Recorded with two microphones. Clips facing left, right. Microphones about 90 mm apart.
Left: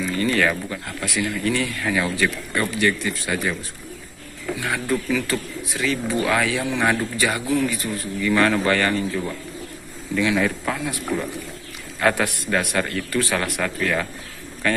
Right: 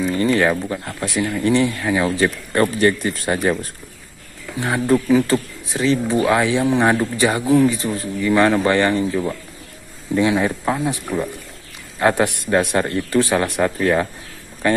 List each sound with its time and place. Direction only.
0.1 s speech: 25° right (ahead or behind)
2.5 s speech: 40° right (ahead or behind)
4.6 s speech: 30° right (ahead or behind)
12.0 s speech: 25° right (ahead or behind)